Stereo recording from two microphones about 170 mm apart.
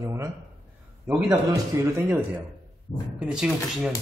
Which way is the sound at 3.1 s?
5° right (ahead or behind).